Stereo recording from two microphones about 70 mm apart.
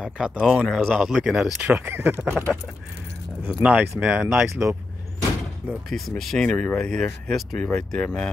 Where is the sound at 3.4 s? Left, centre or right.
Centre.